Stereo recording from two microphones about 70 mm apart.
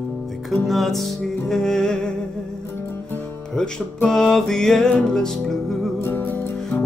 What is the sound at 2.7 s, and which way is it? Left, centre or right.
Music, left.